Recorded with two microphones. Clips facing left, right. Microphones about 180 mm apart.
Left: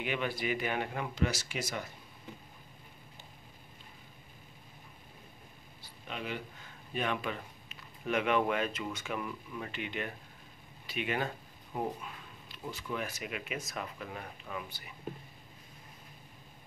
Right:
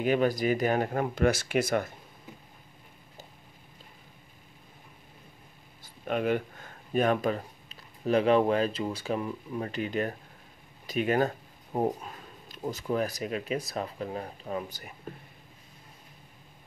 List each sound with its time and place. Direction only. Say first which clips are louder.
0.0 s speech: right 9 dB; 40° right (ahead or behind)
5.8 s speech: right 12 dB; 50° right (ahead or behind)